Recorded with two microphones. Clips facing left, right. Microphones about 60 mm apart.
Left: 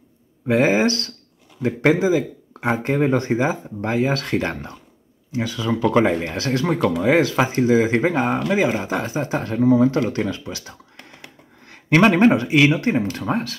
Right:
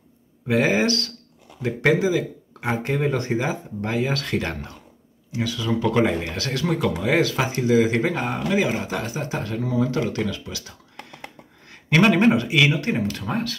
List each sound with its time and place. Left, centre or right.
0.5 s speech: left
11.7 s a sound: left
12.2 s speech: left